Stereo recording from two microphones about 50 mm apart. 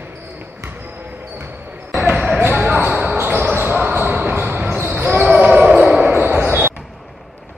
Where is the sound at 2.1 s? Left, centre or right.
Centre.